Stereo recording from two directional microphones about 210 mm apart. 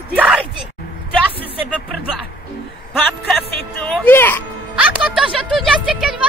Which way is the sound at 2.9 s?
5° left (ahead or behind).